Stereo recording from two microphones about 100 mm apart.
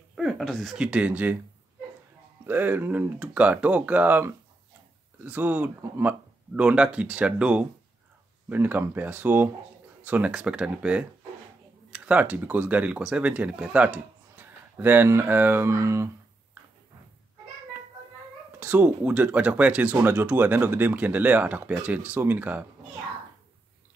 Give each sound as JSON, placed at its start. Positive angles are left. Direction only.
{"t": 0.1, "sound": "a sound", "side_deg": 0}
{"t": 0.8, "sound": "speech", "side_deg": -15}
{"t": 2.4, "sound": "speech", "side_deg": -20}
{"t": 18.6, "sound": "speech", "side_deg": -15}